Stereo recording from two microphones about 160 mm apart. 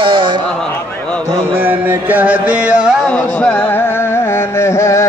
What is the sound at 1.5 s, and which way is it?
Music, 10° right (ahead or behind).